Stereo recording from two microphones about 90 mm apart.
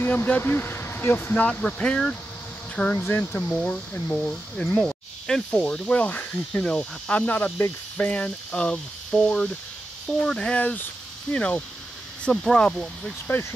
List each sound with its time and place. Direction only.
0.0 s speech: 20° left (ahead or behind)
3.4 s speech: 10° left (ahead or behind)